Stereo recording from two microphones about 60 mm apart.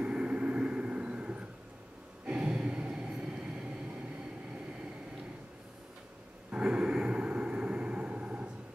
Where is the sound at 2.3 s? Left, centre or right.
Centre.